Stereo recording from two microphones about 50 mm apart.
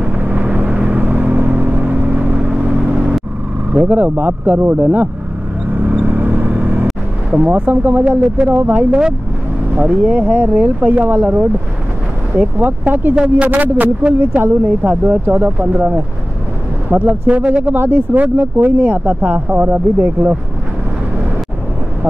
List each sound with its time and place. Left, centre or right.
0.0 s vehicle: right
3.7 s speech: right
5.7 s vehicle: right
8.5 s speech: right
13.1 s speech: right
16.9 s speech: right
17.7 s speech: right